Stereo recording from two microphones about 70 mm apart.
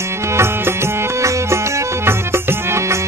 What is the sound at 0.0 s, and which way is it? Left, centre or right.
Music, right.